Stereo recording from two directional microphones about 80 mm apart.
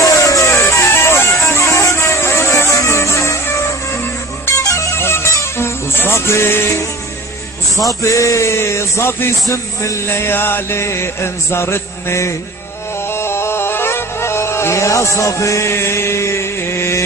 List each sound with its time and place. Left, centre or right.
0.0 s music: left
8.0 s a man's voice: left
13.1 s music: left